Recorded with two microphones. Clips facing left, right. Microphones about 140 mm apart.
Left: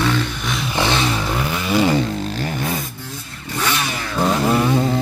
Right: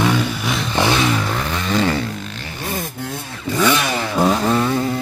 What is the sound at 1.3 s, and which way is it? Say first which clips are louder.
Vehicle: left 1 dB; 10° left (ahead or behind).